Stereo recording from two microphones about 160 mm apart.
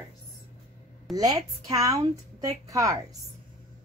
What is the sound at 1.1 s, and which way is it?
A woman's voice, 25° right (ahead or behind).